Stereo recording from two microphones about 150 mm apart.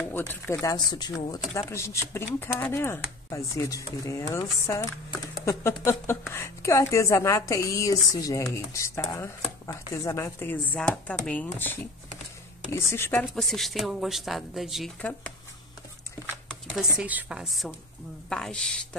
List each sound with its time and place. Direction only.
0.1 s speech: 15° left (ahead or behind)
13.2 s speech: centre (ahead or behind)
15.0 s speech: 10° left (ahead or behind)
16.4 s speech: centre (ahead or behind)